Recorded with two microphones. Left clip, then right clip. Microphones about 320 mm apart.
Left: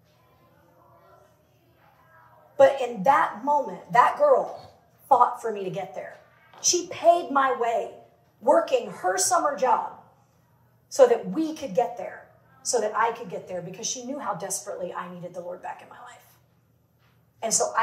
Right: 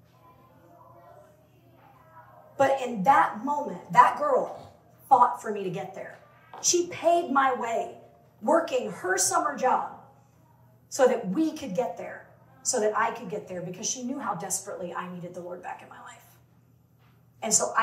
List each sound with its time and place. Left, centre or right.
2.5 s a woman's voice: left
10.9 s a woman's voice: left